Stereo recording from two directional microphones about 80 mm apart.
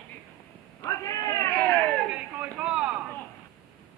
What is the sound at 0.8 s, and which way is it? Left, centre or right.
Cat, left.